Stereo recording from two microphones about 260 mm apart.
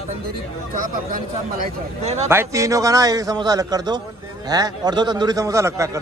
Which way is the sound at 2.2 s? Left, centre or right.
Centre.